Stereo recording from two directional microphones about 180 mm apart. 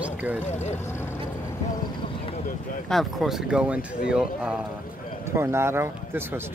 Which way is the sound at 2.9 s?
Centre (ahead or behind).